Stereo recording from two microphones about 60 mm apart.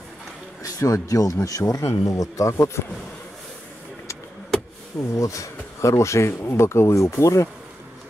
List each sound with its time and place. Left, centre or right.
0.6 s speech: left
5.1 s speech: left